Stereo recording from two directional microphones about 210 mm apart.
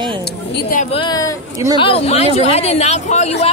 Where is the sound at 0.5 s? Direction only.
40° left (ahead or behind).